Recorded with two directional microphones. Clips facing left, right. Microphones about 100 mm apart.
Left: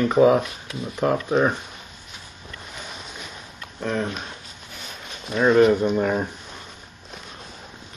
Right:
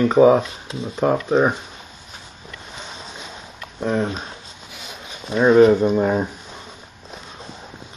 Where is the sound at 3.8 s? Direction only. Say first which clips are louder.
Right 4 dB; 15° right (ahead or behind).